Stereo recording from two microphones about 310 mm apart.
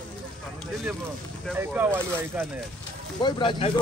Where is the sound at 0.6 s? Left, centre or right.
Centre.